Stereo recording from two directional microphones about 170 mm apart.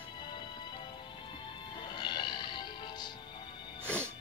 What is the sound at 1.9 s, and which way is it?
Music, 25° left (ahead or behind).